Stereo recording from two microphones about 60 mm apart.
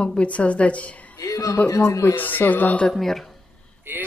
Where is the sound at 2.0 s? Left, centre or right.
Left.